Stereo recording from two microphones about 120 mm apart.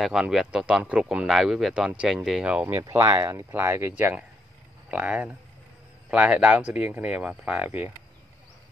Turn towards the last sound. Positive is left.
turn(degrees=-15)  # may be behind; listen again after turning